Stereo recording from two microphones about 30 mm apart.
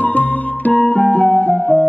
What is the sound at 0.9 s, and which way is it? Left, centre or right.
Music, left.